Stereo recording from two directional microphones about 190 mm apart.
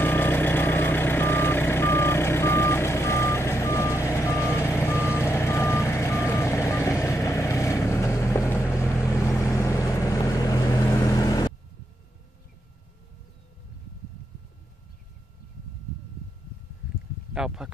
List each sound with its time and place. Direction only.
0.0 s reversing beeps: 10° left (ahead or behind)
9.0 s vehicle: 15° left (ahead or behind)
17.3 s a sound: 5° right (ahead or behind)